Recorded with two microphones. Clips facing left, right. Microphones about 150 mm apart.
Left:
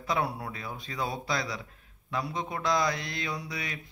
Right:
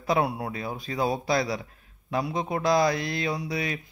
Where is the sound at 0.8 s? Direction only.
30° right (ahead or behind).